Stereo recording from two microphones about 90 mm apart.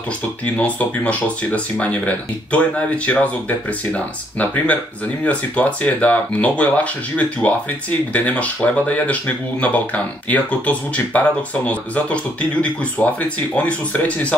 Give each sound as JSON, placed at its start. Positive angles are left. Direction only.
{"t": 0.6, "sound": "speech", "side_deg": 15}